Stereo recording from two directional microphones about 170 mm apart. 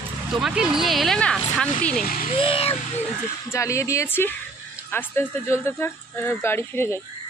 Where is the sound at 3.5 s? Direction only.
15° left (ahead or behind).